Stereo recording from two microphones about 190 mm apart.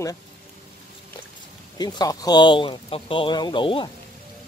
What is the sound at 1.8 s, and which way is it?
Speech, 20° left (ahead or behind).